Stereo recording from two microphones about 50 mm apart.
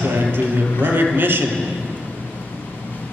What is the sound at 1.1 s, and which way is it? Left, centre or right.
Speech, right.